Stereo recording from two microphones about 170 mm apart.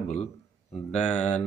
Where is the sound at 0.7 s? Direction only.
5° left (ahead or behind).